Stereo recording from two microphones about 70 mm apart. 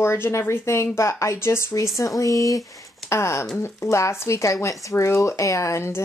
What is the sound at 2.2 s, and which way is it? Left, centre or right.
Speech, left.